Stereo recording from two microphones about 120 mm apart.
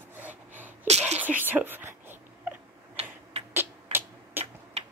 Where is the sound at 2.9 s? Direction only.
60° right (ahead or behind).